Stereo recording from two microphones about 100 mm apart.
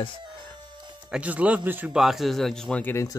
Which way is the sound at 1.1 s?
15° right (ahead or behind).